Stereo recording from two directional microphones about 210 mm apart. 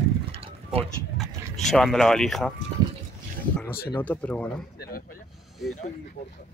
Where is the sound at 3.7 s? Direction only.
45° left (ahead or behind).